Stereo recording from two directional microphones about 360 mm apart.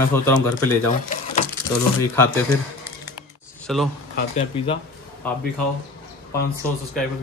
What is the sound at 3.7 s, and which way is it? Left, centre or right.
Speech, centre.